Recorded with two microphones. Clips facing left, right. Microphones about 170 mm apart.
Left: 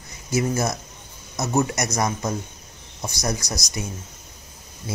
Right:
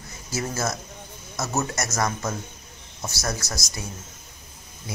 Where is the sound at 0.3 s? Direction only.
15° left (ahead or behind).